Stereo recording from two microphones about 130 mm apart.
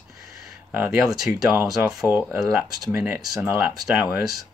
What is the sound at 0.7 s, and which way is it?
Speech, 15° right (ahead or behind).